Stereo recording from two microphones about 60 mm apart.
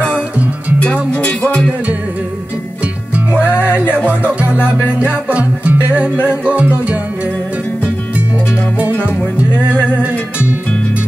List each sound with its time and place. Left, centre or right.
1.1 s music: left
3.9 s music: right